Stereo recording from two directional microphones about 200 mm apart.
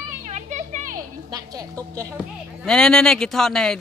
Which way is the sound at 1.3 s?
20° right (ahead or behind).